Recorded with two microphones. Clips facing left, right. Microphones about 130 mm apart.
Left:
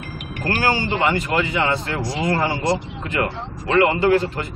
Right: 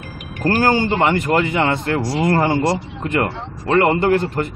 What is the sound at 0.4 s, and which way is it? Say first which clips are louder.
Speech: right 5 dB; 45° right (ahead or behind).